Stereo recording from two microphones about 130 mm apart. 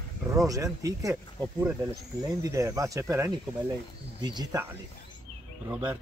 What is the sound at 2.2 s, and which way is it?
Speech, 30° right (ahead or behind).